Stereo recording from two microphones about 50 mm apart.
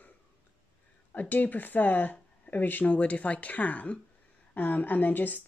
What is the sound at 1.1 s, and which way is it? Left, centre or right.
A woman's voice, left.